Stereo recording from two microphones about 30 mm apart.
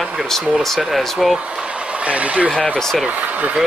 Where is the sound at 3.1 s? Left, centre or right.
Right.